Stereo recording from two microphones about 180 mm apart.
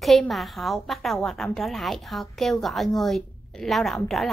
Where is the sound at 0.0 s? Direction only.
Centre (ahead or behind).